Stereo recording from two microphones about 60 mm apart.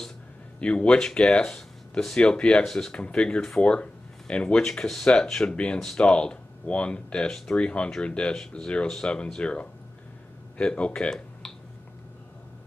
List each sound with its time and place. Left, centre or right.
0.6 s speech: centre